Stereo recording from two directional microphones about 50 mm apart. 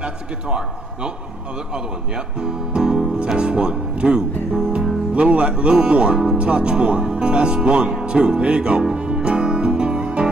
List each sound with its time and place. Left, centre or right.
0.0 s a man's voice: centre
2.3 s speech: centre
8.9 s music: centre